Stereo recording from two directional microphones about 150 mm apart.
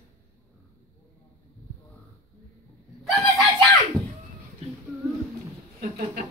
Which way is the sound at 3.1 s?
Centre (ahead or behind).